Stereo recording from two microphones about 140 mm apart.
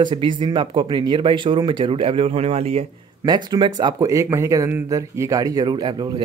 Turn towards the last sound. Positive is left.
turn(degrees=-30)  # may be behind; listen again after turning